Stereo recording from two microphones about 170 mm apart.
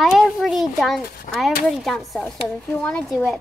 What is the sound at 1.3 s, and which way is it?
Speech, 55° left (ahead or behind).